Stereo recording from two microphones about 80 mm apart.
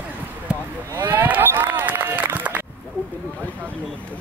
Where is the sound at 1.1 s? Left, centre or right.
Right.